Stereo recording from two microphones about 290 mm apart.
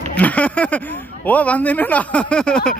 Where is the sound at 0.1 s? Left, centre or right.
Centre.